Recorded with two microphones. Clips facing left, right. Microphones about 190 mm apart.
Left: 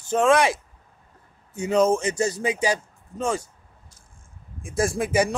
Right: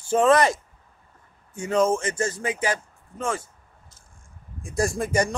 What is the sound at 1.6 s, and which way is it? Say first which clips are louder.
Speech: left 2 dB; 15° left (ahead or behind).